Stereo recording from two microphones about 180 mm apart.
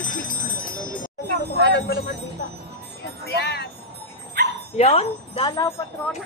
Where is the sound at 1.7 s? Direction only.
60° left (ahead or behind).